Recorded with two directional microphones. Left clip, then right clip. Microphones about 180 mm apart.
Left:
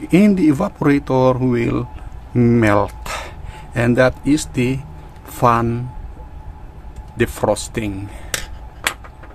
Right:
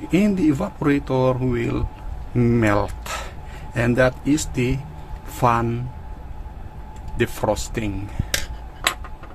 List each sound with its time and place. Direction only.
0.1 s a man's voice: 25° left (ahead or behind)
7.2 s speech: 20° left (ahead or behind)